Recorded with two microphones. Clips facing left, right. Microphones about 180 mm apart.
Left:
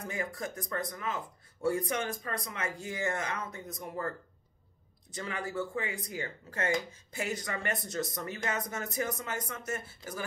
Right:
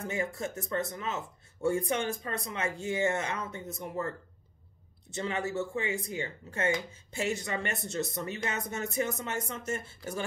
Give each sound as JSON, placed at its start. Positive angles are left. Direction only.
{"t": 0.0, "sound": "speech", "side_deg": -25}
{"t": 5.1, "sound": "speech", "side_deg": -25}